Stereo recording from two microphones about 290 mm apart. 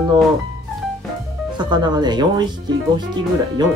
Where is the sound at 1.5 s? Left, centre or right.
Centre.